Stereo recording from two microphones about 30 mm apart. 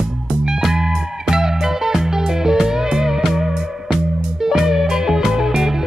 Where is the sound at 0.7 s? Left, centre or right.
Centre.